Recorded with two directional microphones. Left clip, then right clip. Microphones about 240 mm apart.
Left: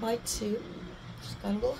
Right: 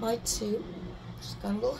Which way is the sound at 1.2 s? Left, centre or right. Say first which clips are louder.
Even; right.